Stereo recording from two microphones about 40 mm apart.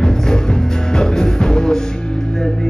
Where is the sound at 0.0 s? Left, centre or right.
Centre.